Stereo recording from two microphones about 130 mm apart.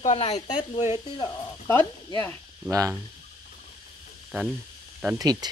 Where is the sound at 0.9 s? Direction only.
35° left (ahead or behind).